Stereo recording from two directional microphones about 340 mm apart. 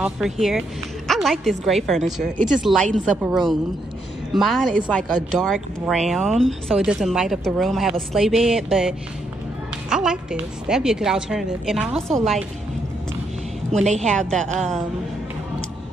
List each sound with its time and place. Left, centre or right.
0.0 s speech: centre
13.7 s a woman's voice: centre
14.5 s speech: centre